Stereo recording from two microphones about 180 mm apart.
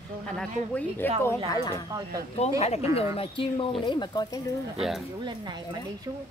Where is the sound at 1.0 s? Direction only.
10° left (ahead or behind).